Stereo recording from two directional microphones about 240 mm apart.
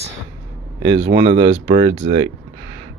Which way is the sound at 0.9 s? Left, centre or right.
Right.